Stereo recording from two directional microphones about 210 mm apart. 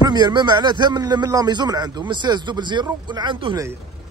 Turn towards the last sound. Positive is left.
turn(degrees=-25)  # may be behind; listen again after turning